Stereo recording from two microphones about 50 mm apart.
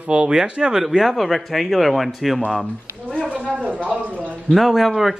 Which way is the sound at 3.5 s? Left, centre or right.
Right.